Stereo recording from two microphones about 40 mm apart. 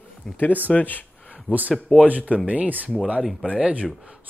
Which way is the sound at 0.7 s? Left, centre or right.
Left.